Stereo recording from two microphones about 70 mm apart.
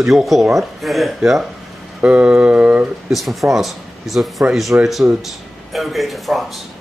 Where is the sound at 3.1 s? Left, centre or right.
Centre.